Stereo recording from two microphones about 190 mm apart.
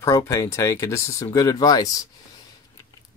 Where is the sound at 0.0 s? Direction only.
15° left (ahead or behind).